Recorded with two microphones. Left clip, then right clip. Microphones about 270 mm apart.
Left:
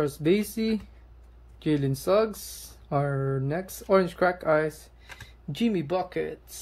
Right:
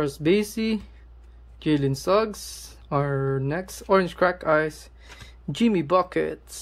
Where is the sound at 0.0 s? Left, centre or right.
Centre.